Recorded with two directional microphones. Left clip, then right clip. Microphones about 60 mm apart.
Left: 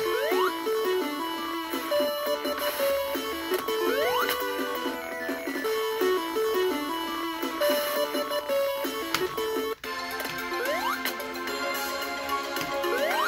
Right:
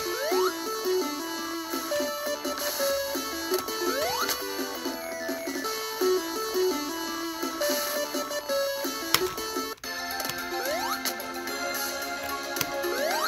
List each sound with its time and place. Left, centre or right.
0.1 s music: right
5.9 s music: centre
12.8 s music: right